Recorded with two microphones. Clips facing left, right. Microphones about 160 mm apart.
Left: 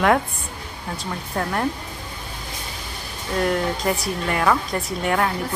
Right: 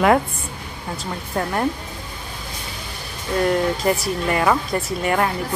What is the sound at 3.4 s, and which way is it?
Speech, centre (ahead or behind).